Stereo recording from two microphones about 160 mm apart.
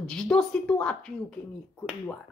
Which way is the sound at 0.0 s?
5° left (ahead or behind).